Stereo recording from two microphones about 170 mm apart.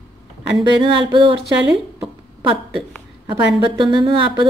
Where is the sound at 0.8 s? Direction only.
30° right (ahead or behind).